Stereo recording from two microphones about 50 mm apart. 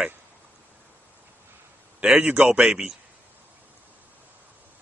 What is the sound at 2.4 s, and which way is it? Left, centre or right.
Speech, centre.